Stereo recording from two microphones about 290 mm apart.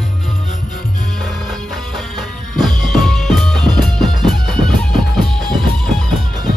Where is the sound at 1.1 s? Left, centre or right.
Centre.